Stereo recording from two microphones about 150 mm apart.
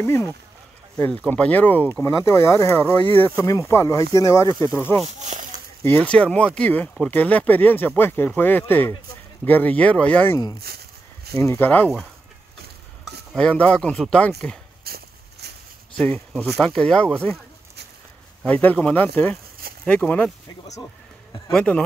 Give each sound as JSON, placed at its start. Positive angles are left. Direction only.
{"t": 0.0, "sound": "speech", "side_deg": 15}
{"t": 3.0, "sound": "speech", "side_deg": -40}
{"t": 3.3, "sound": "speech", "side_deg": 20}
{"t": 10.6, "sound": "a sound", "side_deg": -90}
{"t": 11.3, "sound": "speech", "side_deg": 15}
{"t": 13.3, "sound": "speech", "side_deg": 5}
{"t": 14.8, "sound": "a sound", "side_deg": -90}
{"t": 16.5, "sound": "speech", "side_deg": 5}
{"t": 18.4, "sound": "speech", "side_deg": 10}
{"t": 21.5, "sound": "speech", "side_deg": 5}